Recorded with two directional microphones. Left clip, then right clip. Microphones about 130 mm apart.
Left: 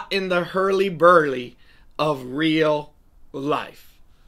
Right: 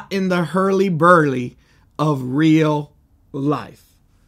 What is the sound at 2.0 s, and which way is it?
Speech, 90° right.